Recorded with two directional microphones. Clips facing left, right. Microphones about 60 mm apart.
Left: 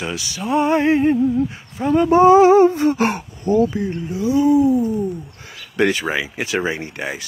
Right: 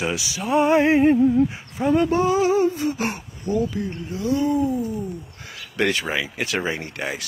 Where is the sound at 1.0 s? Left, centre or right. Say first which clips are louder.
Even; centre.